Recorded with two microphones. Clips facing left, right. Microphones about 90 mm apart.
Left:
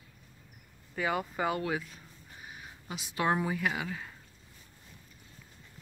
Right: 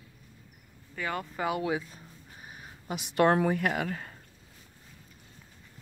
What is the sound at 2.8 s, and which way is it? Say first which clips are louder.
Speech: right 6 dB; 55° right (ahead or behind).